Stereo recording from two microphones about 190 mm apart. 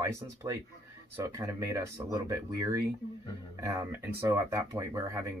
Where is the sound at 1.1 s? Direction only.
15° right (ahead or behind).